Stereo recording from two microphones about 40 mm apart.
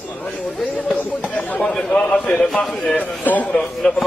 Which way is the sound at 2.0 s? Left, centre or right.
Left.